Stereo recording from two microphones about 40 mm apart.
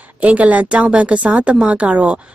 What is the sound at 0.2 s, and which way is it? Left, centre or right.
A woman's voice, right.